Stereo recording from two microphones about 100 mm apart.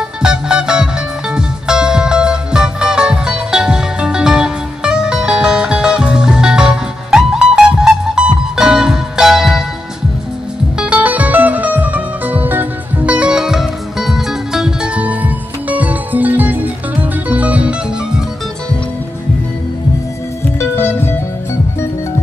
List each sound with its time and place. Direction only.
0.2 s music: 10° right (ahead or behind)
10.8 s music: 10° right (ahead or behind)
20.5 s music: 25° left (ahead or behind)